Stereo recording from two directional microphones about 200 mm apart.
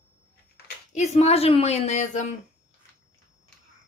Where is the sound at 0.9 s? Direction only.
35° left (ahead or behind).